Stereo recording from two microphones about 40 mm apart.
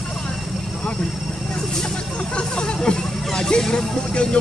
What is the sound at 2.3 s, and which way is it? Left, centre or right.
Speech, left.